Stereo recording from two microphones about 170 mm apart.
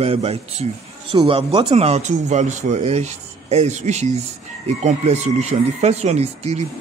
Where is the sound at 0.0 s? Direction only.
35° right (ahead or behind).